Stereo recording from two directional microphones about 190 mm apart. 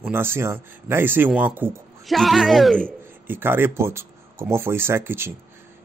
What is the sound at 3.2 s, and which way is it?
Speech, 10° right (ahead or behind).